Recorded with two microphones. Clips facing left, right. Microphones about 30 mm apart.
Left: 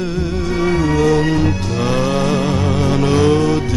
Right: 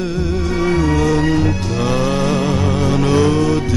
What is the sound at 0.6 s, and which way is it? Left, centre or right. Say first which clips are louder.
Music: left 1 dB; centre.